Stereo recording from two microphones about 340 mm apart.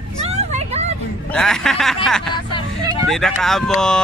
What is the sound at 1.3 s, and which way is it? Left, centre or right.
Speech, centre.